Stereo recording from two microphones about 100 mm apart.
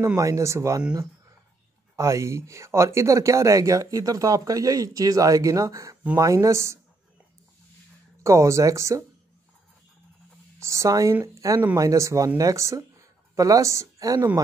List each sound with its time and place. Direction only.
0.0 s speech: 35° right (ahead or behind)
2.0 s speech: 30° right (ahead or behind)
8.2 s speech: 30° right (ahead or behind)
10.6 s speech: 30° right (ahead or behind)